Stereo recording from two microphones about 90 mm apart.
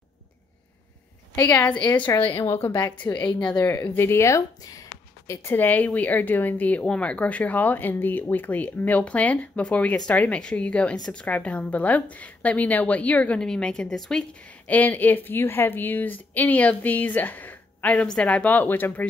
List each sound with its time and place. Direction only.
1.4 s speech: 25° left (ahead or behind)
2.2 s a woman's voice: 65° left (ahead or behind)
2.8 s speech: 15° left (ahead or behind)
14.7 s speech: 20° left (ahead or behind)